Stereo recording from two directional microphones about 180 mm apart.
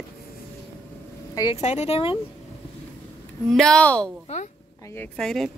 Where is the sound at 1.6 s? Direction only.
40° left (ahead or behind).